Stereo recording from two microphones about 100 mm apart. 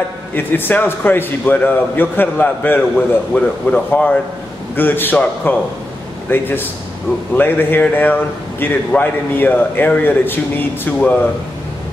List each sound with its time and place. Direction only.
0.3 s a man's voice: 20° left (ahead or behind)